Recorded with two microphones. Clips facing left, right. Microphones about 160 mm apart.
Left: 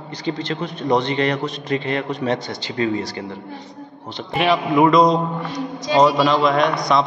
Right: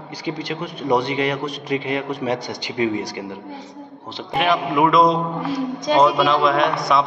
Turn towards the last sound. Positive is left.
turn(degrees=-5)  # may be behind; listen again after turning